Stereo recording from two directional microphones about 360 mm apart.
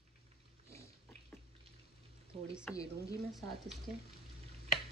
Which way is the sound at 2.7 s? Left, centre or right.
Centre.